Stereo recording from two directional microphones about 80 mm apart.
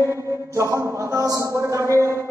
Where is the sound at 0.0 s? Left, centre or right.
Right.